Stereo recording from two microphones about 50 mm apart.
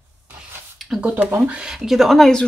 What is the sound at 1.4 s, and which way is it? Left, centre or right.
Speech, right.